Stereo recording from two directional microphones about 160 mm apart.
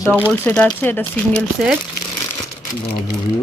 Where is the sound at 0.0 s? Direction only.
10° left (ahead or behind).